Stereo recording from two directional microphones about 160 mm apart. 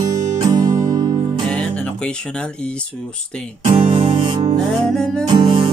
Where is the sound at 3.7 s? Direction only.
30° right (ahead or behind).